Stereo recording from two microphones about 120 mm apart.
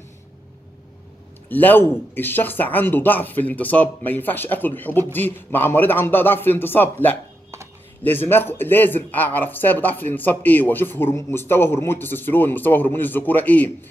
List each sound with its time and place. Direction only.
1.5 s speech: 15° left (ahead or behind)